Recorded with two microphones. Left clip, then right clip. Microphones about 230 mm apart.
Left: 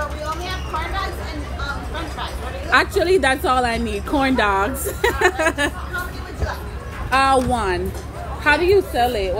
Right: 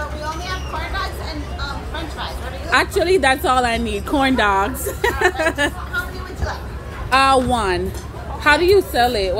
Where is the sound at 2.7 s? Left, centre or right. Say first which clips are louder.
Even; centre.